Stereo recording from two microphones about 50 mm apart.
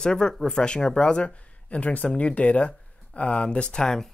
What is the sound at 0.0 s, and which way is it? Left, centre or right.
Speech, centre.